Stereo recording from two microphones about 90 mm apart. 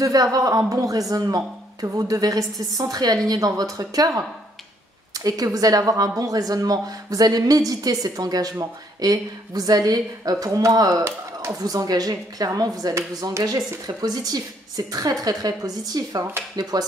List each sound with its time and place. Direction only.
0.0 s a woman's voice: 40° right (ahead or behind)